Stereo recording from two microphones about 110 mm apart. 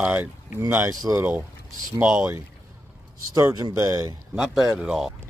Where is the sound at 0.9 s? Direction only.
30° right (ahead or behind).